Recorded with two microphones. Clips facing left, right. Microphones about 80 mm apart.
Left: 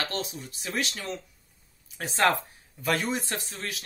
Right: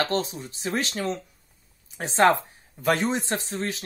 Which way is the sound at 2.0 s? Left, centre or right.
Right.